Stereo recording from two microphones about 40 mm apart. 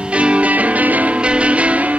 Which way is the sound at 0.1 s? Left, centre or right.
Right.